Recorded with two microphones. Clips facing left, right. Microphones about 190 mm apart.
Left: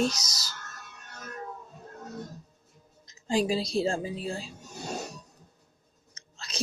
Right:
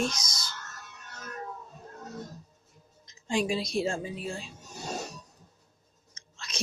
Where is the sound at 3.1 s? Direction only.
35° left (ahead or behind).